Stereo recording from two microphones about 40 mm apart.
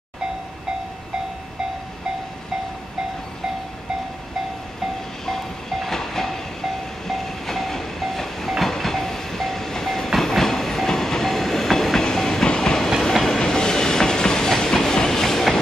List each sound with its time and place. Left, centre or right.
5.2 s train: centre